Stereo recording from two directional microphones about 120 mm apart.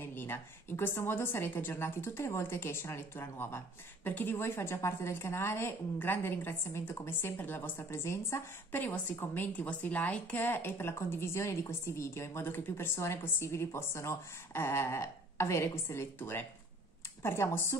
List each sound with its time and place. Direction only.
0.0 s a woman's voice: 20° left (ahead or behind)